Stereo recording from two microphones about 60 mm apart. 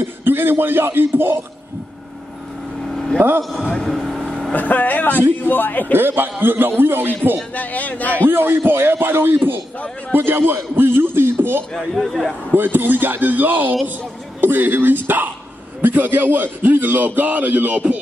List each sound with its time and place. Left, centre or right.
0.0 s speech: right
2.8 s vehicle: centre
3.2 s speech: right
3.4 s speech: centre
3.7 s vehicle: centre
4.6 s a man's voice: left
5.9 s speech: right
7.5 s speech: left
8.1 s speech: right
11.7 s speech: centre
12.5 s speech: right